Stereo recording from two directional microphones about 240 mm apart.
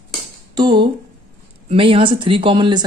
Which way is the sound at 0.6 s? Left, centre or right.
Centre.